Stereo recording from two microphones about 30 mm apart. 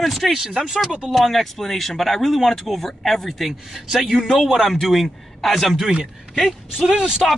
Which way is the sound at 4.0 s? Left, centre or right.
Centre.